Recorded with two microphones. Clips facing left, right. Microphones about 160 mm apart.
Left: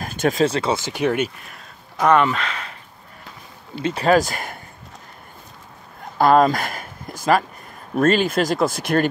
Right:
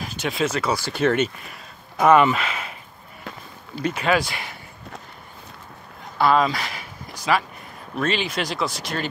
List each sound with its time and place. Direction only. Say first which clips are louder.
0.0 s a sound: left 6 dB; 50° left (ahead or behind)
0.5 s speech: left 2 dB; 25° left (ahead or behind); by 1.3 s 10° left (ahead or behind)
1.5 s speech: right 1 dB; 5° right (ahead or behind)
3.8 s speech: left 4 dB; 35° left (ahead or behind)
6.1 s speech: left 4 dB; 45° left (ahead or behind)